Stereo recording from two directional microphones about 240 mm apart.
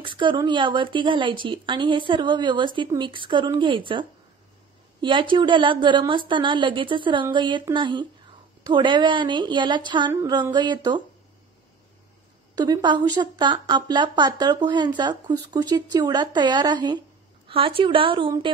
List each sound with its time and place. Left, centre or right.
0.0 s speech: centre
12.5 s a woman's voice: centre